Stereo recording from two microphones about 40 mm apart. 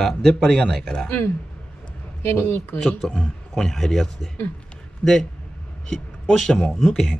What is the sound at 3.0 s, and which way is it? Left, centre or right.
A man's voice, centre.